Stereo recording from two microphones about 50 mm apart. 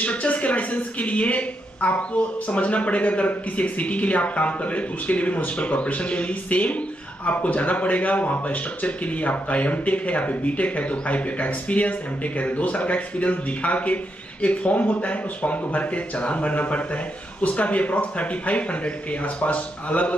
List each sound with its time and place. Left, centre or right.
0.0 s speech: left